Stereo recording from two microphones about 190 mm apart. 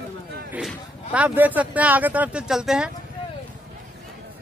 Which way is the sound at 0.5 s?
5° right (ahead or behind).